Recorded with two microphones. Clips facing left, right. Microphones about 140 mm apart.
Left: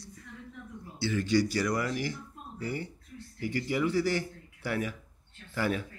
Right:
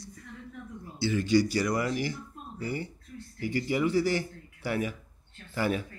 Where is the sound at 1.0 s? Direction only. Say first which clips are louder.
Right 2 dB; 15° right (ahead or behind).